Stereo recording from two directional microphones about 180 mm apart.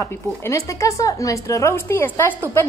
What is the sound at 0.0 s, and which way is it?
A woman's voice, 15° left (ahead or behind).